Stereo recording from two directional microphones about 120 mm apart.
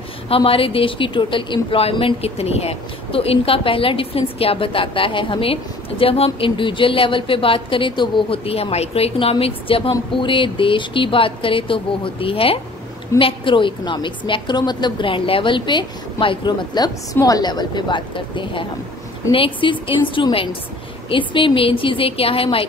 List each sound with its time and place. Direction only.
0.3 s a woman's voice: 50° left (ahead or behind)